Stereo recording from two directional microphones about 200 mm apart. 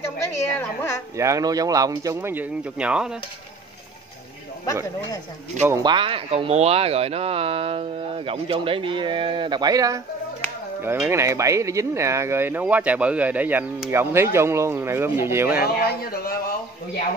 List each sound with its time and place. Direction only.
0.2 s speech: 15° left (ahead or behind)
1.1 s speech: 15° right (ahead or behind)
5.7 s speech: 20° right (ahead or behind)
15.6 s speech: 50° left (ahead or behind)